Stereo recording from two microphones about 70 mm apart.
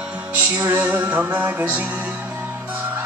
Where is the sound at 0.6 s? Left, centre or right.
Right.